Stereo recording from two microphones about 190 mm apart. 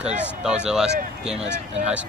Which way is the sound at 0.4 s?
5° right (ahead or behind).